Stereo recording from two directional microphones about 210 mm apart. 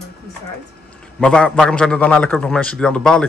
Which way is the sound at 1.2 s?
5° left (ahead or behind).